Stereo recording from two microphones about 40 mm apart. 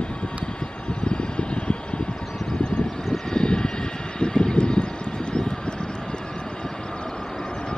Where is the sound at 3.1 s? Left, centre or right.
Centre.